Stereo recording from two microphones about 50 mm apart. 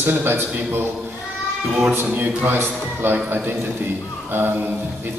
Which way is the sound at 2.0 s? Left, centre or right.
Right.